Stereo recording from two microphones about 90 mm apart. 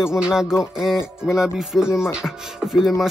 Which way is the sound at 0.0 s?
5° right (ahead or behind).